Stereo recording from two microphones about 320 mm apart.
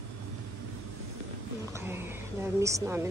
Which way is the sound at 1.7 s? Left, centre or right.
Centre.